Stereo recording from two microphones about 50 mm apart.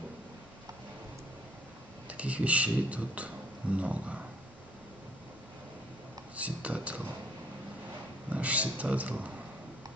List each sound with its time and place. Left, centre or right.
2.0 s speech: right
6.3 s speech: right
8.3 s a man's voice: right